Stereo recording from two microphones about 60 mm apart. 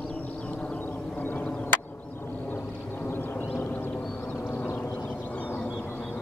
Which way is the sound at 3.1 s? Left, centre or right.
Left.